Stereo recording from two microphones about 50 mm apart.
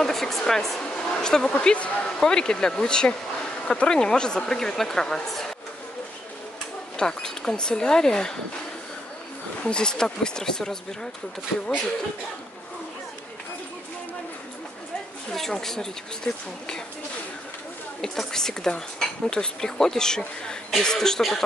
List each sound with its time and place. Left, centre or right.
0.0 s speech: centre
7.0 s speech: centre
9.6 s speech: centre
15.3 s speech: centre
18.0 s speech: centre